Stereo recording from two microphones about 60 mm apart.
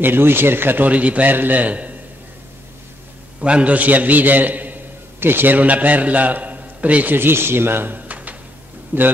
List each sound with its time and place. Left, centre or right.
0.0 s a man's voice: right
3.3 s a man's voice: centre; by 9.1 s right